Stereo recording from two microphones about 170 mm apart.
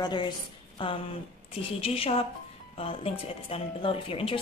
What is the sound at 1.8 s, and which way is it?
A woman's voice, 35° left (ahead or behind).